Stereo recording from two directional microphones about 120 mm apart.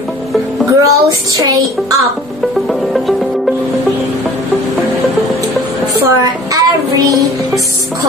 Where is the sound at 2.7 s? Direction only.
Centre (ahead or behind).